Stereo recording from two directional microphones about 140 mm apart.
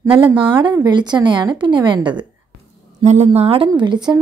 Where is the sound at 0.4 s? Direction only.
35° right (ahead or behind).